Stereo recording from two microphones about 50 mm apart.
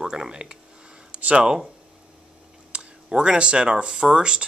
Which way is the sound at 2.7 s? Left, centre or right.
Centre.